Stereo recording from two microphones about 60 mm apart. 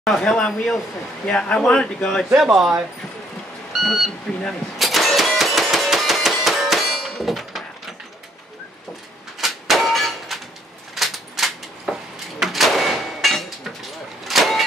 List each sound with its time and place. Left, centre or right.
0.0 s speech: centre
1.2 s a man's voice: centre
2.3 s speech: centre
3.8 s speech: centre
4.7 s clang: centre
9.4 s a sound: centre